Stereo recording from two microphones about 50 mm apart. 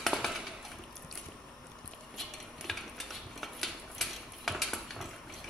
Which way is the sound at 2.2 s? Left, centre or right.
Centre.